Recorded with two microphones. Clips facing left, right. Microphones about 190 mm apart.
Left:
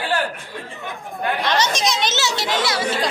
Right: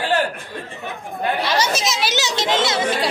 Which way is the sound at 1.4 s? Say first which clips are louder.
Left 3 dB; 10° right (ahead or behind).